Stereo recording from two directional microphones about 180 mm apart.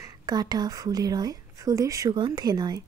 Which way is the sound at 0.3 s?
20° right (ahead or behind).